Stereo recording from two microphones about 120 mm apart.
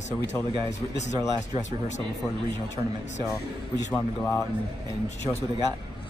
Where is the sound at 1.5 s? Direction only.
75° left (ahead or behind).